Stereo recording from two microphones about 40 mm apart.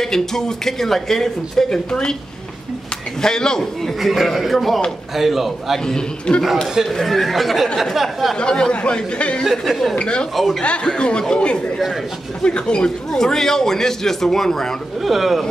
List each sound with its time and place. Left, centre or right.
0.0 s speech: centre
3.2 s speech: centre
4.0 s speech: centre
5.9 s speech: left
6.9 s speech: centre
8.4 s speech: centre
9.4 s speech: centre
9.9 s speech: left
10.3 s speech: centre
10.6 s speech: left; by 14.7 s centre
15.0 s speech: centre